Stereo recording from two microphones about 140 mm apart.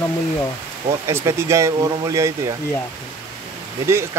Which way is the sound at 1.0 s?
20° right (ahead or behind).